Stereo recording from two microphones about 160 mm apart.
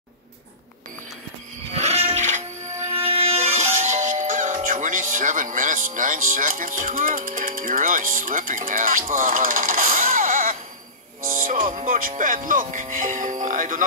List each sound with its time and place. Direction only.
1.7 s wild animals: 40° right (ahead or behind)
3.0 s music: 40° right (ahead or behind)
3.8 s music: 50° right (ahead or behind)
4.6 s speech: 55° right (ahead or behind)
9.1 s a sound: 60° right (ahead or behind)
11.2 s music: 60° right (ahead or behind)
11.6 s music: 40° right (ahead or behind)
12.2 s speech: 55° right (ahead or behind)